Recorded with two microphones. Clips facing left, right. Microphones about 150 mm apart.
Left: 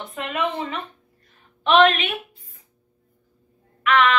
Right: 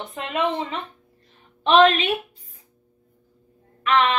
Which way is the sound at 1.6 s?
35° right (ahead or behind).